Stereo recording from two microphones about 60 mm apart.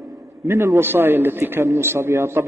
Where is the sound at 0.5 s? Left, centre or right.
Right.